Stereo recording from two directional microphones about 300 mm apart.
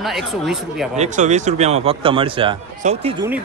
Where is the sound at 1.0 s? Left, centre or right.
Right.